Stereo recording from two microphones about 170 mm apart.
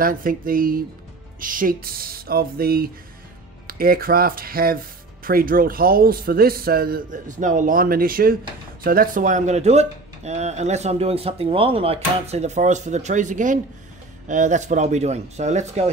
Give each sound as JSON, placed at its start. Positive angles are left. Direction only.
{"t": 0.0, "sound": "a man's voice", "side_deg": -55}